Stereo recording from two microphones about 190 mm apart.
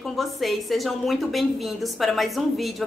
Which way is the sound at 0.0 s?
Centre (ahead or behind).